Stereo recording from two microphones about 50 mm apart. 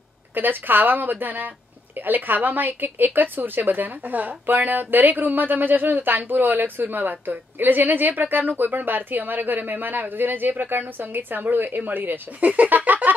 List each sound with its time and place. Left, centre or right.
0.3 s speech: right